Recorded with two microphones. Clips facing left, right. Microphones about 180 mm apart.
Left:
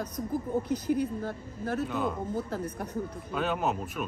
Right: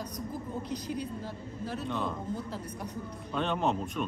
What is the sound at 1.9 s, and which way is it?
Speech, 5° left (ahead or behind).